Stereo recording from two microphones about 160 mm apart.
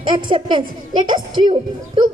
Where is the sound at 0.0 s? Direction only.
30° right (ahead or behind).